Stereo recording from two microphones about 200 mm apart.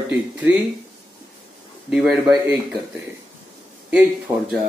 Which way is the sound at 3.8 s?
5° right (ahead or behind).